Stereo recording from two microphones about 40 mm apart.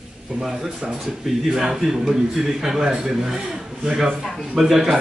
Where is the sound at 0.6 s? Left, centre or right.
Right.